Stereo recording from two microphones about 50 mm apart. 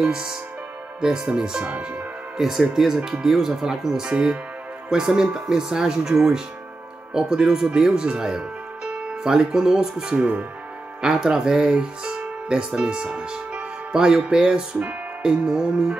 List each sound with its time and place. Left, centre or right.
0.0 s speech: centre
2.3 s speech: centre
10.1 s speech: right
11.0 s speech: centre